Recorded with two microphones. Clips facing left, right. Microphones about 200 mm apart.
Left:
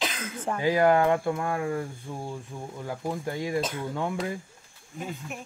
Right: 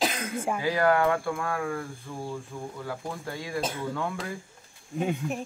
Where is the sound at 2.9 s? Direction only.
20° left (ahead or behind).